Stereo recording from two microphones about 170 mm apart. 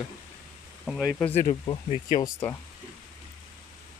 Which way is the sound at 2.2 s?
15° left (ahead or behind).